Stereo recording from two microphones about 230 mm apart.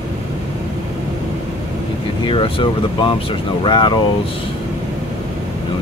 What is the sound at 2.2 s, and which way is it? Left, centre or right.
Speech, left.